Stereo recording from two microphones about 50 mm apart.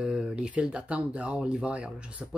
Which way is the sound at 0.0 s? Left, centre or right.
Centre.